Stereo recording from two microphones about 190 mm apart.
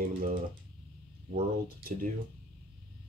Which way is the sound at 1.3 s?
50° right (ahead or behind).